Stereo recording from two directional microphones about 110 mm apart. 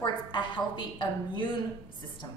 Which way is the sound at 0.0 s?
45° left (ahead or behind).